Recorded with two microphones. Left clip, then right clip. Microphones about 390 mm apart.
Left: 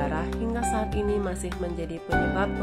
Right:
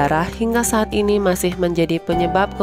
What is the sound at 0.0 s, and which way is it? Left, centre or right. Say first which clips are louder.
Speech: right 11 dB; right.